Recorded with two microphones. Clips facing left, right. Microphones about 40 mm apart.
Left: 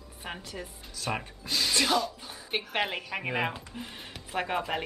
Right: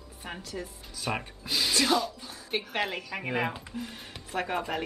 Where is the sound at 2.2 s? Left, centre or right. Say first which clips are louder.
Even; centre.